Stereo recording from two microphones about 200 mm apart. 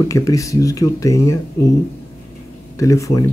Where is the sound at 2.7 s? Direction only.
15° left (ahead or behind).